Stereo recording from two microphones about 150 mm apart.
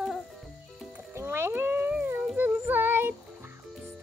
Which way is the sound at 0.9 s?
15° right (ahead or behind).